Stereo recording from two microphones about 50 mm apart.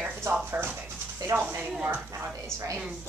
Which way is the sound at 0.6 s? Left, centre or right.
Right.